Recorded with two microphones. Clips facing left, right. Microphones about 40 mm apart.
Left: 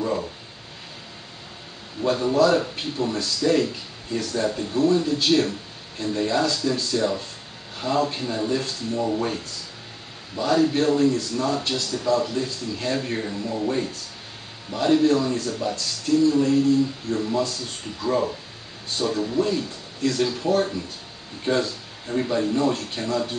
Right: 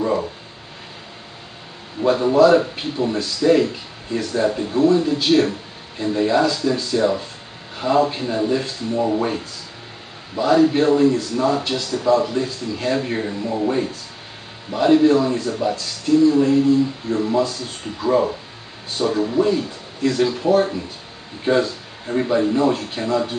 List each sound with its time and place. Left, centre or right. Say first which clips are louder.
2.0 s a man's voice: right 5 dB; centre